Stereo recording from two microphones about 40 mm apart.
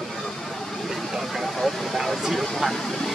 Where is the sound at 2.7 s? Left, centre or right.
Centre.